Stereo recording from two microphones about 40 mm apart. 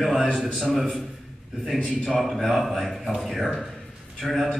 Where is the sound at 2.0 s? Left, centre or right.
Centre.